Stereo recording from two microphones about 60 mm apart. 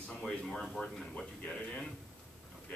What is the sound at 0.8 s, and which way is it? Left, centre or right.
A man's voice, centre.